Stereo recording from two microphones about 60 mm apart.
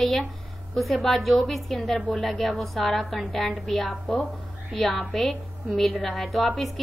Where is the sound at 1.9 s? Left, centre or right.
Left.